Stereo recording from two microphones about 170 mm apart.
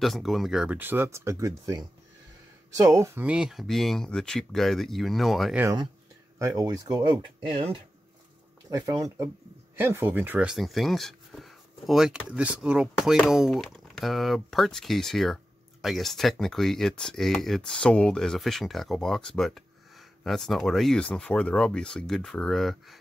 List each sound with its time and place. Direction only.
0.0 s speech: centre (ahead or behind)
5.6 s speech: 20° right (ahead or behind); by 22.9 s centre (ahead or behind)